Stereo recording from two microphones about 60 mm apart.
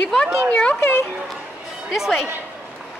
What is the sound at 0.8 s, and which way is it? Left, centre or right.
Speech, left.